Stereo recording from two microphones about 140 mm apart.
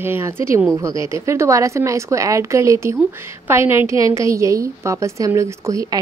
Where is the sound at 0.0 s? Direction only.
15° right (ahead or behind).